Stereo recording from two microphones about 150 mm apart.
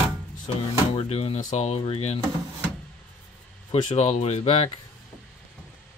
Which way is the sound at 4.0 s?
45° left (ahead or behind).